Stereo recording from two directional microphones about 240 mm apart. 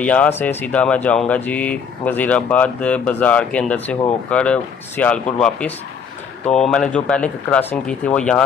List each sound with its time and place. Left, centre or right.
0.0 s speech: centre